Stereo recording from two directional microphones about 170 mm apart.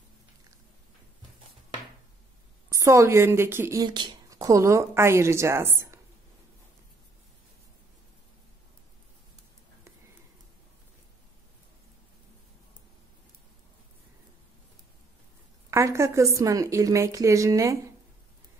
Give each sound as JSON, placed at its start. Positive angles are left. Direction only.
{"t": 2.7, "sound": "a woman's voice", "side_deg": -20}
{"t": 3.8, "sound": "a woman's voice", "side_deg": -25}
{"t": 15.7, "sound": "a woman's voice", "side_deg": -15}